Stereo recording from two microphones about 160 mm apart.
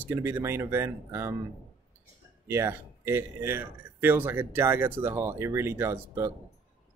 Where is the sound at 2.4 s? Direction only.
15° right (ahead or behind).